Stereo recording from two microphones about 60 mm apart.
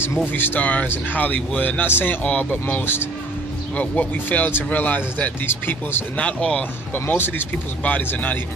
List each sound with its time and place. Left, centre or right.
0.3 s speech: left
2.2 s speech: left
2.8 s speech: left
3.7 s speech: left
5.5 s speech: left
6.1 s speech: left
6.9 s speech: left